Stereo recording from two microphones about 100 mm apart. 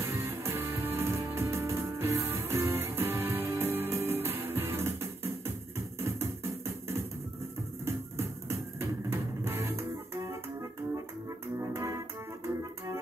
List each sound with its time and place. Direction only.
0.0 s music: 25° right (ahead or behind)
11.5 s music: 30° right (ahead or behind)